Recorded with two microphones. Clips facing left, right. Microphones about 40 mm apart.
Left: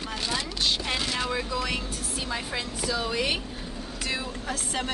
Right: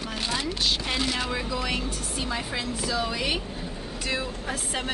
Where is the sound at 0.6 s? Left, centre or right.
Centre.